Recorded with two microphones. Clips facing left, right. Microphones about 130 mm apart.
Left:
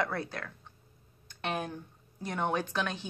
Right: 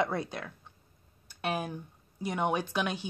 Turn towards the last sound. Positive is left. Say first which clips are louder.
# right 1 dB
turn(degrees=-10)  # may be behind; listen again after turning